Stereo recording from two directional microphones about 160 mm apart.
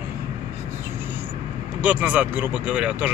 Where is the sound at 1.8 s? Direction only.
10° right (ahead or behind).